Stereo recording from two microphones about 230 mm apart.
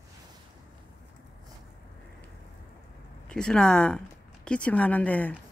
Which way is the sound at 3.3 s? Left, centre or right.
Centre.